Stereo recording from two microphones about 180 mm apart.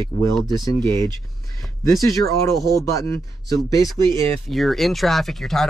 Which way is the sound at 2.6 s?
20° left (ahead or behind).